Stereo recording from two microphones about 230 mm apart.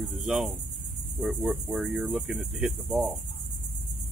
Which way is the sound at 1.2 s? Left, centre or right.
Centre.